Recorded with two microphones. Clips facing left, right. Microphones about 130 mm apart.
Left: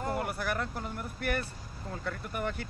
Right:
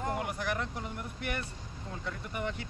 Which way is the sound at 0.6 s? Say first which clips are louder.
Left 2 dB; 45° left (ahead or behind).